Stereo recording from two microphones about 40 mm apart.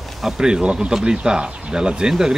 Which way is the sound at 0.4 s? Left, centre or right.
Centre.